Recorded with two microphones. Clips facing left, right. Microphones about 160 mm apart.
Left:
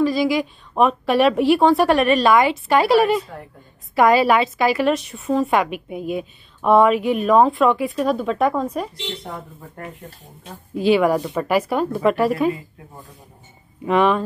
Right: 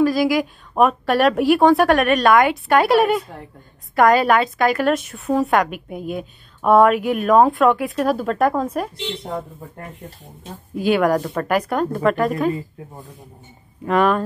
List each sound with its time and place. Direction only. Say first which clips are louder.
0.0 s a woman's voice: right 1 dB; centre (ahead or behind)
10.8 s a woman's voice: left 1 dB; centre (ahead or behind)
13.8 s a woman's voice: even; centre (ahead or behind)